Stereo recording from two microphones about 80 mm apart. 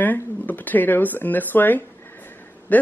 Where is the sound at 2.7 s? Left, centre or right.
Centre.